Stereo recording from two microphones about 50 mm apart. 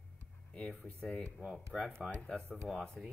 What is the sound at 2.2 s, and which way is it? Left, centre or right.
Speech, left.